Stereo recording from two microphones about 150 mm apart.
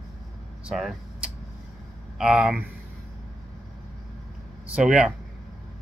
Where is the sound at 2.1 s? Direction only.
5° right (ahead or behind).